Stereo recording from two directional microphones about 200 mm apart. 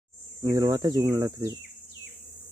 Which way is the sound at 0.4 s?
20° right (ahead or behind).